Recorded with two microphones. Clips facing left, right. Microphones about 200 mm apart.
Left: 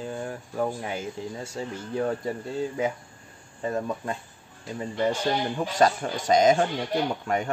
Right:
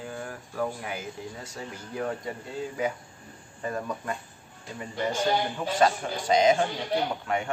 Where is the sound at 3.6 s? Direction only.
25° left (ahead or behind).